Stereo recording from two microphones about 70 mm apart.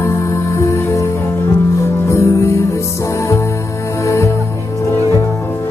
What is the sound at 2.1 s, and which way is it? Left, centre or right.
Music, left.